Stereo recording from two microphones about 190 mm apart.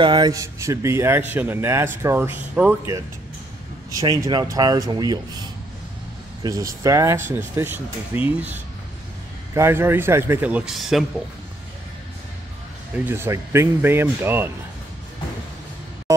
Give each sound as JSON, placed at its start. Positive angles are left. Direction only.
{"t": 0.0, "sound": "speech", "side_deg": -20}
{"t": 3.9, "sound": "speech", "side_deg": -20}
{"t": 6.4, "sound": "speech", "side_deg": -20}
{"t": 12.9, "sound": "speech", "side_deg": -10}